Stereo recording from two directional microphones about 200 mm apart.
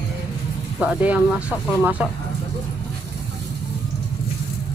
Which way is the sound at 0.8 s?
5° right (ahead or behind).